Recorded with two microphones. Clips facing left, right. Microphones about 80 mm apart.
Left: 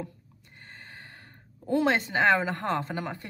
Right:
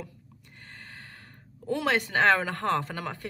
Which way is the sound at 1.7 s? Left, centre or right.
Left.